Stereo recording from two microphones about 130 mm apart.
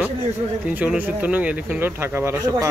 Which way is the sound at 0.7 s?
10° right (ahead or behind).